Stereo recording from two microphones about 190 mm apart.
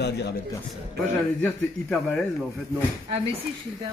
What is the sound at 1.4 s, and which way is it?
Speech, 5° left (ahead or behind).